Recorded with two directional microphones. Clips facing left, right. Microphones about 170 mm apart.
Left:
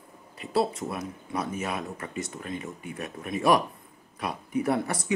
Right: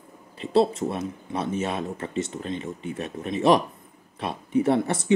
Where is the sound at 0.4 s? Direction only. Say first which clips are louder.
Right 6 dB; 25° right (ahead or behind).